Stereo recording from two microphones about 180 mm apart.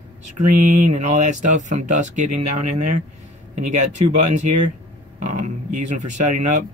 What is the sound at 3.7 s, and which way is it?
Speech, 40° right (ahead or behind).